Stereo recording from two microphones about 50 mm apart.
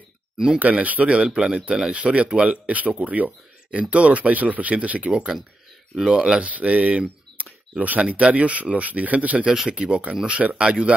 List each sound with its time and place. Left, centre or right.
0.6 s speech: right
5.9 s speech: centre
6.4 s speech: right